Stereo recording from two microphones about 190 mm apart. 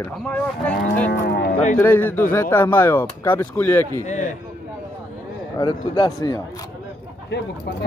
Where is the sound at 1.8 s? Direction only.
10° left (ahead or behind).